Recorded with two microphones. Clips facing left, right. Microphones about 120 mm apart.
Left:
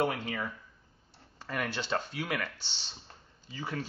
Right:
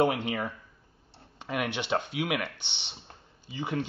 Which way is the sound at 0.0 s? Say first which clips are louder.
Right 5 dB; 20° right (ahead or behind).